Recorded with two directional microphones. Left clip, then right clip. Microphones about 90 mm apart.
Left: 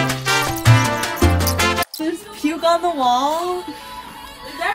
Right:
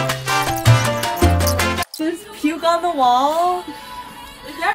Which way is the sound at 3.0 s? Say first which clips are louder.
Right 5 dB; 55° right (ahead or behind).